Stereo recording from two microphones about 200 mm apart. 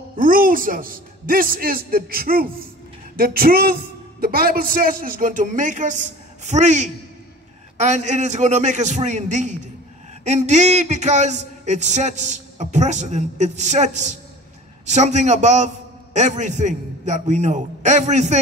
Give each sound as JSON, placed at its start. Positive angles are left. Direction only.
{"t": 0.2, "sound": "a man's voice", "side_deg": -45}